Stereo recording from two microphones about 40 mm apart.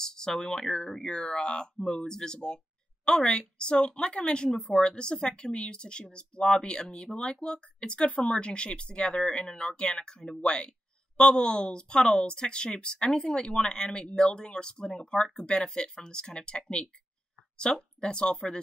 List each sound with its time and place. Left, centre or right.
0.0 s speech: centre